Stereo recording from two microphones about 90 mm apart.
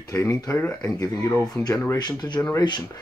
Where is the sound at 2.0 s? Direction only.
50° left (ahead or behind).